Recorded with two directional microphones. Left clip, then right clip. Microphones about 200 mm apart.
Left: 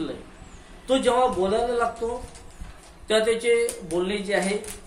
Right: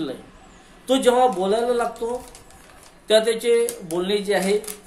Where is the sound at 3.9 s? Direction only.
25° right (ahead or behind).